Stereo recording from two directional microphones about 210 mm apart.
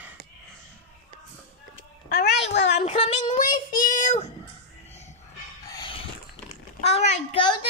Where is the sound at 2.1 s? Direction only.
50° left (ahead or behind).